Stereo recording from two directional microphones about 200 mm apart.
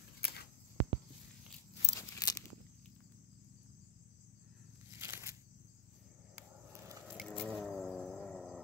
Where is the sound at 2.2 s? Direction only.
20° left (ahead or behind).